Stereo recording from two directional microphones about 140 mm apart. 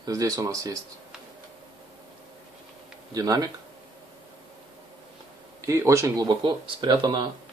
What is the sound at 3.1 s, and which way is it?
Speech, 25° right (ahead or behind).